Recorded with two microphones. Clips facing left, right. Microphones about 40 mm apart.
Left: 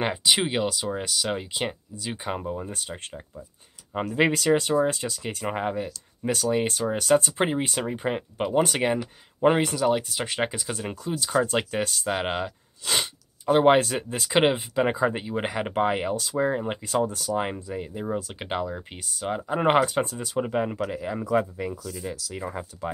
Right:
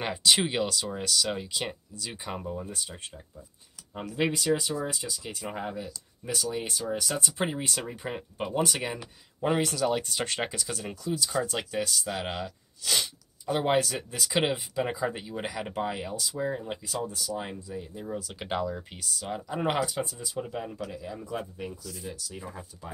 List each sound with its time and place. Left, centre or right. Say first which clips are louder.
0.0 s speech: left 2 dB; centre; by 3.4 s left
3.9 s speech: left 6 dB; left
9.6 s speech: left 4 dB; centre
10.4 s speech: left 5 dB; left
18.4 s speech: left 1 dB; centre; by 21.3 s left
21.9 s speech: left 6 dB; left